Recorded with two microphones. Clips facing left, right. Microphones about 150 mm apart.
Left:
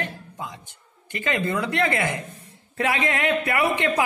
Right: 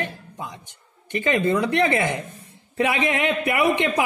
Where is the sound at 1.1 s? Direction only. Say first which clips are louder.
Right 5 dB; 20° right (ahead or behind).